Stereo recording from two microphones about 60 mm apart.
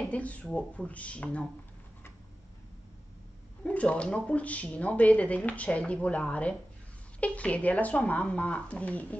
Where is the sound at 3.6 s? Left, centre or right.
Left.